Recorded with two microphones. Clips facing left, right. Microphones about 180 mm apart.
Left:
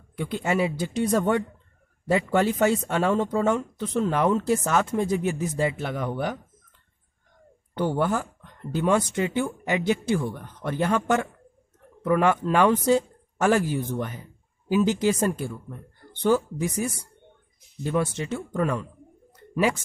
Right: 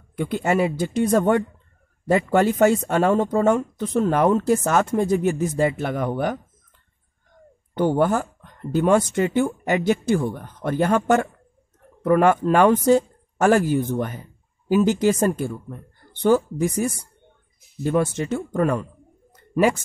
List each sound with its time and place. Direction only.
0.1 s speech: 50° right (ahead or behind)
7.7 s speech: 50° right (ahead or behind)